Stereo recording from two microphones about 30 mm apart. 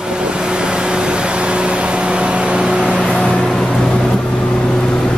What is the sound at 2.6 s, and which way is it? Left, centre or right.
Vehicle, right.